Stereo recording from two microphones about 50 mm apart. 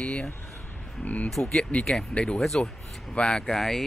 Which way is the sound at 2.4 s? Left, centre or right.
Centre.